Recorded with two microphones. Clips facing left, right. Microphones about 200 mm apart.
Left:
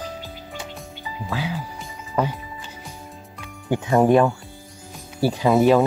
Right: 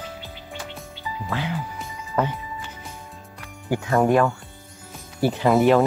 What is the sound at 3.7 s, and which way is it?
Speech, 20° left (ahead or behind).